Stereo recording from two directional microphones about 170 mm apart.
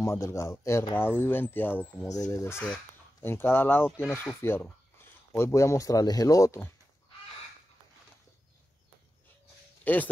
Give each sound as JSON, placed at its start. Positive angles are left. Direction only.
{"t": 0.0, "sound": "speech", "side_deg": 15}